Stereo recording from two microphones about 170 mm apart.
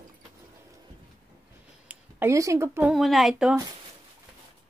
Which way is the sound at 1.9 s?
15° right (ahead or behind).